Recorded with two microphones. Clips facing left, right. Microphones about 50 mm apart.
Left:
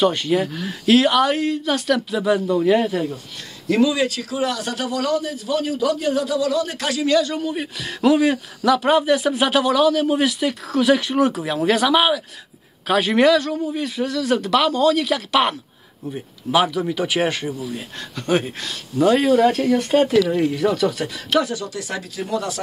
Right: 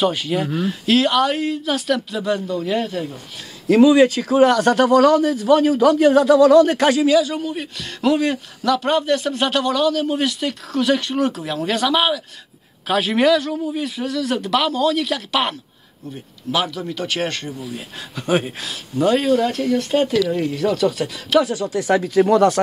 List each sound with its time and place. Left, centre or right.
0.0 s speech: centre
3.8 s speech: right
4.5 s a man's voice: right
6.8 s speech: right
7.1 s speech: centre
16.5 s speech: centre
18.1 s speech: centre
21.7 s speech: right
22.2 s a man's voice: right